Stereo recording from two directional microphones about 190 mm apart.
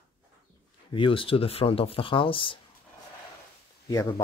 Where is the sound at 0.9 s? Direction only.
25° left (ahead or behind).